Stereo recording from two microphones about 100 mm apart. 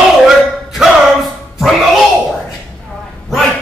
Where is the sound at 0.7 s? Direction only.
Centre (ahead or behind).